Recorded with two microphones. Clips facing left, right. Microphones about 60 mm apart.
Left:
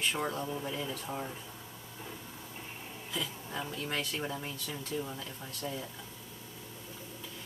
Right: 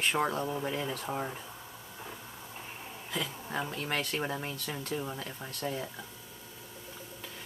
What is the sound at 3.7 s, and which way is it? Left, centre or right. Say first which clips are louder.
Speech: right 2 dB; right.